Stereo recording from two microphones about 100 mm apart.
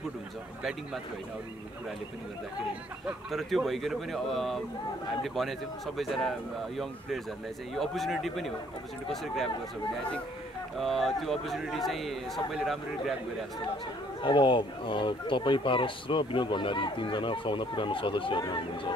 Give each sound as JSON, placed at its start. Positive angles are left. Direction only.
{"t": 3.1, "sound": "a man's voice", "side_deg": 0}
{"t": 7.7, "sound": "a man's voice", "side_deg": 0}
{"t": 10.8, "sound": "a man's voice", "side_deg": 0}
{"t": 14.2, "sound": "speech", "side_deg": 55}